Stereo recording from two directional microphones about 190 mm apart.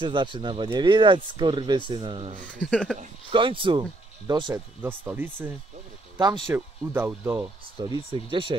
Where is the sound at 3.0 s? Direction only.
30° right (ahead or behind).